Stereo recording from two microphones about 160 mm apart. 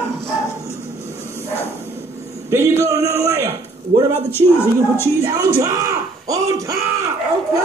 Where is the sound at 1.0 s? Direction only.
20° right (ahead or behind).